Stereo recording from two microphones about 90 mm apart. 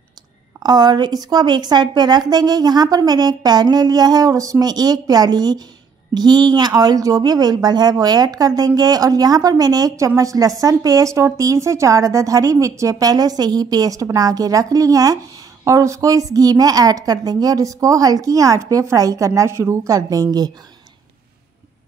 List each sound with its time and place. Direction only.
0.6 s a woman's voice: 50° right (ahead or behind)